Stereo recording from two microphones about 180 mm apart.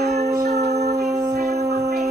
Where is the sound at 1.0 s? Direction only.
60° right (ahead or behind).